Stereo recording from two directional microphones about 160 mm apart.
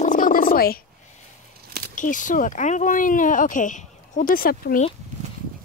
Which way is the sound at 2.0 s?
55° left (ahead or behind).